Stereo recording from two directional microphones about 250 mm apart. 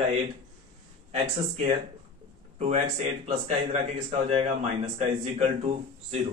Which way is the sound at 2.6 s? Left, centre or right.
Right.